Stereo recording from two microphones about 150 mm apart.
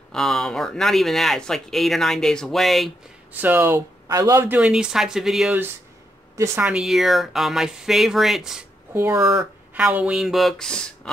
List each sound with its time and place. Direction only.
0.1 s speech: centre (ahead or behind)
3.3 s speech: 10° right (ahead or behind)
6.3 s speech: 15° right (ahead or behind)
8.9 s speech: 15° right (ahead or behind)
9.4 s speech: 5° right (ahead or behind)